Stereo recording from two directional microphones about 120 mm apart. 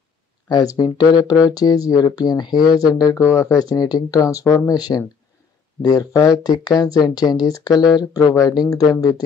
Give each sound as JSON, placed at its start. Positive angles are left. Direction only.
{"t": 0.5, "sound": "speech", "side_deg": 35}